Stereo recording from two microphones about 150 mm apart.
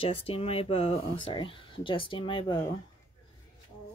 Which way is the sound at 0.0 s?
40° left (ahead or behind).